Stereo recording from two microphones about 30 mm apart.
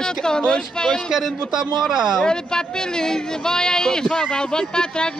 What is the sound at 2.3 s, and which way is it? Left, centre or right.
Speech, left.